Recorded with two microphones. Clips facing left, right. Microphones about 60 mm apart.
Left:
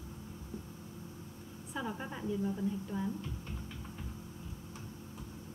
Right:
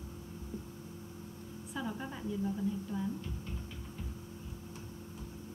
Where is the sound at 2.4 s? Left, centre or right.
Centre.